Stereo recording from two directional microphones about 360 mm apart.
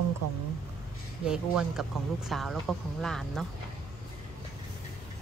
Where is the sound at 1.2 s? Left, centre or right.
Centre.